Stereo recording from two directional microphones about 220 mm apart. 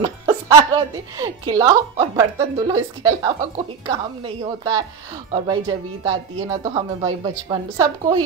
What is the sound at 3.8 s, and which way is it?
A woman's voice, 25° right (ahead or behind).